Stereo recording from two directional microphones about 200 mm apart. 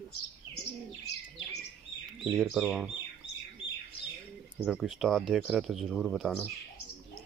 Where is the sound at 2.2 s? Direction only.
Centre (ahead or behind).